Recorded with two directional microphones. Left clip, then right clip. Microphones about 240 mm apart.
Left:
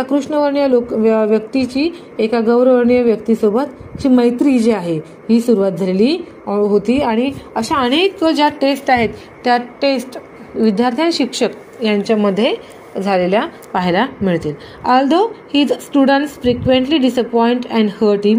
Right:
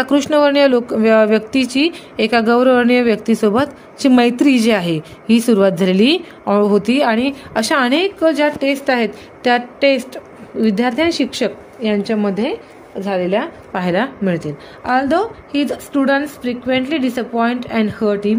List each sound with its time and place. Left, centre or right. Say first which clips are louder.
0.0 s a woman's voice: right 2 dB; right
7.9 s a woman's voice: left 1 dB; centre
8.9 s a woman's voice: left 3 dB; right
14.9 s a woman's voice: left 3 dB; centre